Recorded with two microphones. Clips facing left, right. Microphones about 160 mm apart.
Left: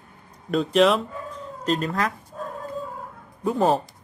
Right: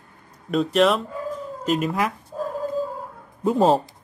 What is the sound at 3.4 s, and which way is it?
Speech, 25° right (ahead or behind).